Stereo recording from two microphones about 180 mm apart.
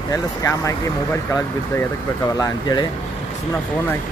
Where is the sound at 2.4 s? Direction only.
25° left (ahead or behind).